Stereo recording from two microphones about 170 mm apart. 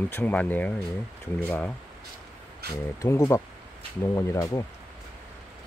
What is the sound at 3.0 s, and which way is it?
Speech, 15° left (ahead or behind).